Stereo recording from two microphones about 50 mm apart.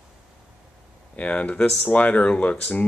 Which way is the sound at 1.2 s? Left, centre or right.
Left.